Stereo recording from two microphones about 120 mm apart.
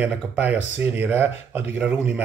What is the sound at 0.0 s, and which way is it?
Speech, 15° right (ahead or behind).